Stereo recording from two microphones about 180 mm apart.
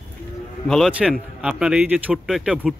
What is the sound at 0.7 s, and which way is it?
A man's voice, centre (ahead or behind).